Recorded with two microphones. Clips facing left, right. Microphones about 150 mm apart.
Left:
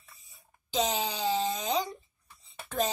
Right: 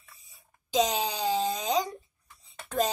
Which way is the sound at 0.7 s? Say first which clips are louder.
Right 3 dB; 10° right (ahead or behind).